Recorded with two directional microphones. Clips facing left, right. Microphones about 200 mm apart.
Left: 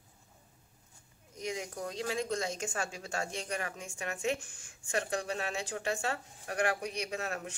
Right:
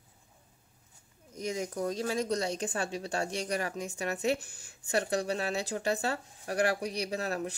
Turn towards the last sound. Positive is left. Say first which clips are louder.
# right 4 dB
turn(degrees=-35)  # may be behind; listen again after turning